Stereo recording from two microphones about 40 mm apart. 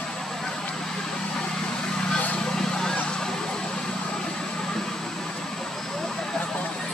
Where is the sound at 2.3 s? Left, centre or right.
Centre.